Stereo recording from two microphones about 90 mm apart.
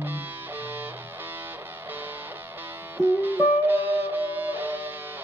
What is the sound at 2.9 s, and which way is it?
Music, 20° right (ahead or behind).